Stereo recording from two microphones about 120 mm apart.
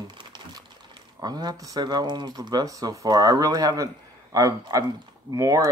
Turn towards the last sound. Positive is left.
turn(degrees=-30)  # may be behind; listen again after turning